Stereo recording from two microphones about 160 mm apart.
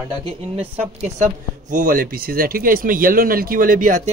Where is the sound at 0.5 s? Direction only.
45° right (ahead or behind).